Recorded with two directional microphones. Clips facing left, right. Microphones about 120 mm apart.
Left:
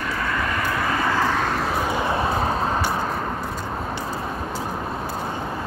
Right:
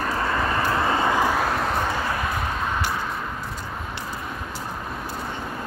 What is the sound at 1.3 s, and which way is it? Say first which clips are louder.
Vehicle: even; 5° right (ahead or behind).